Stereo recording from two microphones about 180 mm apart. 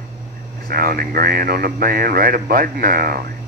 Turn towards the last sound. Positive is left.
turn(degrees=-50)  # may be behind; listen again after turning